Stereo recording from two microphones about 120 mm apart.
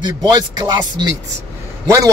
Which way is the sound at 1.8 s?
25° right (ahead or behind).